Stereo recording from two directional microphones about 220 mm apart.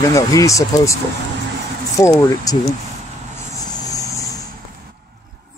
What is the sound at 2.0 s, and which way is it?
Speech, 15° left (ahead or behind).